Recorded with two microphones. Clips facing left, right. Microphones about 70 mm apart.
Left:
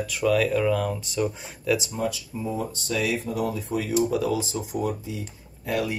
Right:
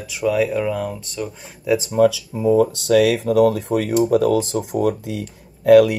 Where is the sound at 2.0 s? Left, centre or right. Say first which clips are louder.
Right 13 dB; right.